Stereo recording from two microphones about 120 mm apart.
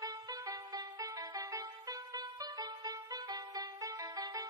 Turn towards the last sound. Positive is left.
turn(degrees=-30)  # may be behind; listen again after turning